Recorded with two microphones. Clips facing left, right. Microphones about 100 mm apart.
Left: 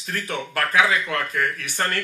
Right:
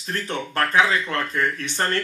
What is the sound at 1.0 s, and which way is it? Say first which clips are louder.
Speech: right 1 dB; 25° right (ahead or behind).